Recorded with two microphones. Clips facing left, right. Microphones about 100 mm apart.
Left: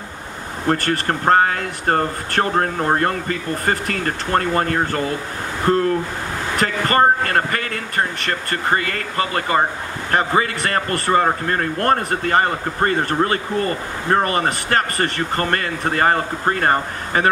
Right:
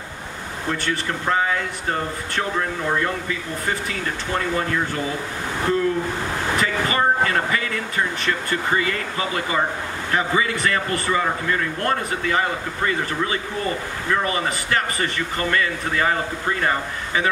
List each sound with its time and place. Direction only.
0.7 s a man's voice: 50° left (ahead or behind)